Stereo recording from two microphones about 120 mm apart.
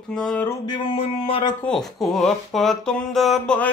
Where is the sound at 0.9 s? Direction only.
50° left (ahead or behind).